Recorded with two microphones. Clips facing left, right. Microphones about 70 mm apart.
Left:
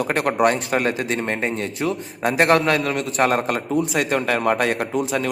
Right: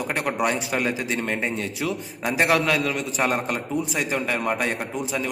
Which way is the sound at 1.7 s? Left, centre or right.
Centre.